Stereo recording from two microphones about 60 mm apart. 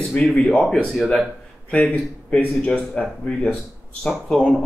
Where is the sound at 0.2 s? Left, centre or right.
Centre.